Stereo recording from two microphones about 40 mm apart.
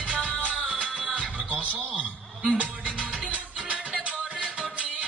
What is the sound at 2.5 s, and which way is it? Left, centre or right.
Music, right.